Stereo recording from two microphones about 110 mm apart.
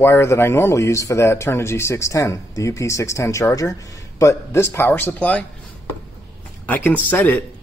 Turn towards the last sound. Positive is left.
turn(degrees=15)  # may be behind; listen again after turning